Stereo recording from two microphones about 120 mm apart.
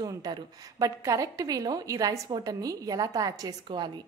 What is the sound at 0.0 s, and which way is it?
A woman's voice, 35° right (ahead or behind).